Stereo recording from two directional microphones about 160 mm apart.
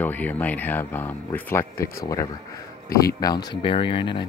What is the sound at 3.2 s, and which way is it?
Speech, 25° left (ahead or behind).